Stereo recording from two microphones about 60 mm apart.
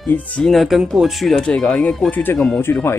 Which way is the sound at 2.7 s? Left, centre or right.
Left.